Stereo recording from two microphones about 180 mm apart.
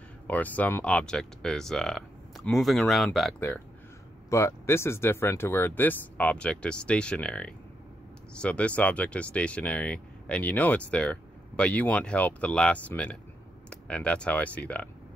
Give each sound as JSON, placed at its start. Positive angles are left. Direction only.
{"t": 0.3, "sound": "speech", "side_deg": 10}
{"t": 4.3, "sound": "speech", "side_deg": 15}